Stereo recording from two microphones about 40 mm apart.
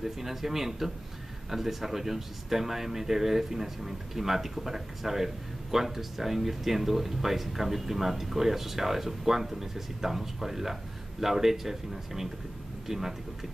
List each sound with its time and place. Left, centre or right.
0.0 s speech: centre